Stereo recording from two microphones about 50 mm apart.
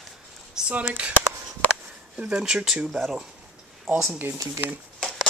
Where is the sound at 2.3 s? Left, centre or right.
Centre.